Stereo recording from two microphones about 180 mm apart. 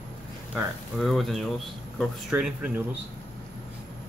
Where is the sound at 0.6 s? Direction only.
Centre (ahead or behind).